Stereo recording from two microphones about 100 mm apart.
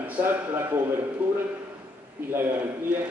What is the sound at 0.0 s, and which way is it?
A man's voice, 15° right (ahead or behind).